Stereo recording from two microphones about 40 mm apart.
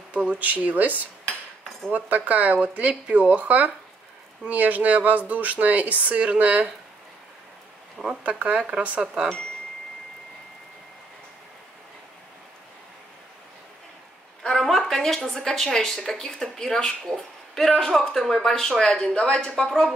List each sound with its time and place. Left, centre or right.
0.1 s speech: right
8.2 s speech: right; by 9.3 s centre
14.4 s a sound: centre
15.2 s speech: centre